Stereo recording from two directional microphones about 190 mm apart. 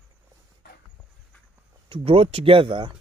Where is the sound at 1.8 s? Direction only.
30° right (ahead or behind).